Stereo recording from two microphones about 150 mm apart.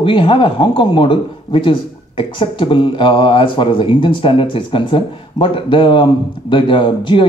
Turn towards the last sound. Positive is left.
turn(degrees=35)  # may be behind; listen again after turning